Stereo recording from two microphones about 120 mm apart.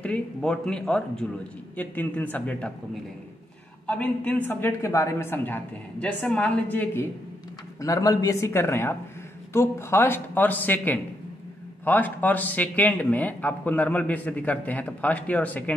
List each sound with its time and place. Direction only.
0.0 s speech: 10° left (ahead or behind)
3.8 s speech: 10° left (ahead or behind)
7.8 s speech: 30° left (ahead or behind); by 15.7 s 15° left (ahead or behind)